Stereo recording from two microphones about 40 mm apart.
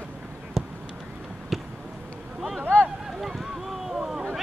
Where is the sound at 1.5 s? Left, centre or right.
Centre.